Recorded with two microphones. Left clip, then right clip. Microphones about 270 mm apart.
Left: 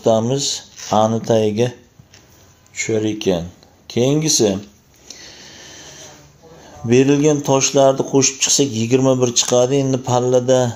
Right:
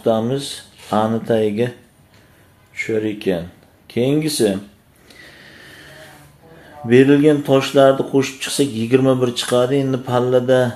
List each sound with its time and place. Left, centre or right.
0.0 s speech: left
2.7 s speech: left
5.0 s a sound: left
6.9 s speech: left